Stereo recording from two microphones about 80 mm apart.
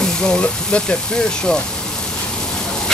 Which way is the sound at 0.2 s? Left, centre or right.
Centre.